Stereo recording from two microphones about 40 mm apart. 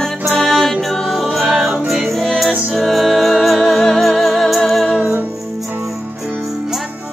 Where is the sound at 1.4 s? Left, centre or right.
Centre.